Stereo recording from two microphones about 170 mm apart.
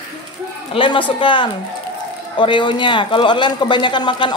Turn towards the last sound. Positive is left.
turn(degrees=25)  # may be behind; listen again after turning